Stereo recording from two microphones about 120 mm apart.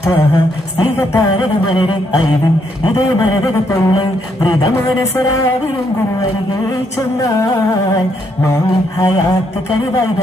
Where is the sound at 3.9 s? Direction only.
35° left (ahead or behind).